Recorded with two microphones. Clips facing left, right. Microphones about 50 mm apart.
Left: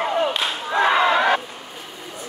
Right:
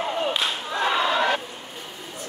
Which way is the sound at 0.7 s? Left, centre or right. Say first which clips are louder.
Left 6 dB; left.